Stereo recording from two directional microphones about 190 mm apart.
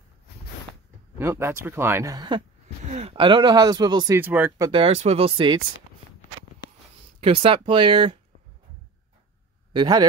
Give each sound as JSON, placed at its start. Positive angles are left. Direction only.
{"t": 1.1, "sound": "speech", "side_deg": -15}
{"t": 2.8, "sound": "speech", "side_deg": -35}
{"t": 4.6, "sound": "speech", "side_deg": -30}
{"t": 7.2, "sound": "speech", "side_deg": -30}
{"t": 9.7, "sound": "a man's voice", "side_deg": -25}